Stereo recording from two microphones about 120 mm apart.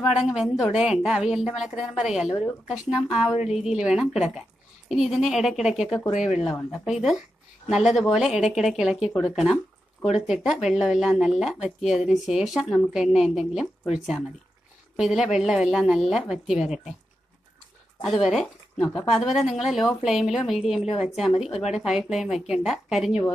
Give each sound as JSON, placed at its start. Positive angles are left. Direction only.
{"t": 0.3, "sound": "a woman's voice", "side_deg": -5}
{"t": 18.0, "sound": "a woman's voice", "side_deg": 0}
{"t": 21.3, "sound": "speech", "side_deg": 55}
{"t": 21.7, "sound": "a woman's voice", "side_deg": -5}